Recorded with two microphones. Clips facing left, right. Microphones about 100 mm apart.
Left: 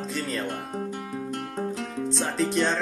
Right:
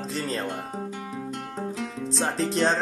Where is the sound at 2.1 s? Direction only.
35° right (ahead or behind).